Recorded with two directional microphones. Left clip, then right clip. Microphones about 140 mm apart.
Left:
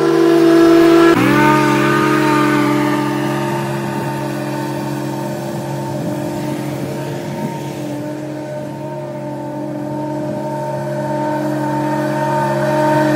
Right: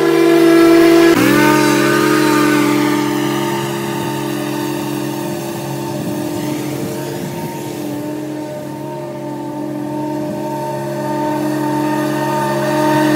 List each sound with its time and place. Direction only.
0.0 s train: centre (ahead or behind)
1.1 s music: 25° right (ahead or behind)
11.1 s music: 35° right (ahead or behind)